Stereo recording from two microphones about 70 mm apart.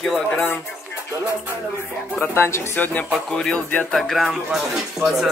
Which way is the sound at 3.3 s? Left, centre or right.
Centre.